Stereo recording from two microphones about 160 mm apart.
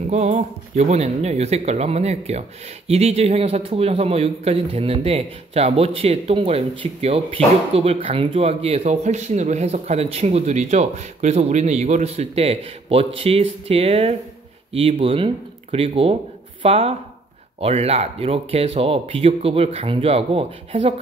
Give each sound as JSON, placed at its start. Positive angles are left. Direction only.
{"t": 0.1, "sound": "a man's voice", "side_deg": -45}